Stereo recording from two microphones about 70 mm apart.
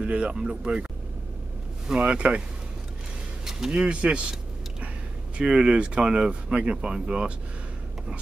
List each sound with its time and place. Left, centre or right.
0.0 s speech: centre
2.0 s speech: centre
3.4 s a sound: centre
5.4 s speech: centre